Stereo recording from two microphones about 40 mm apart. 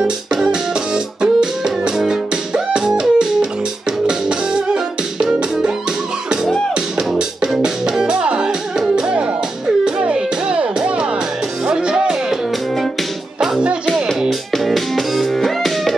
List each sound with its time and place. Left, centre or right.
0.0 s music: centre
6.7 s music: centre
14.5 s music: centre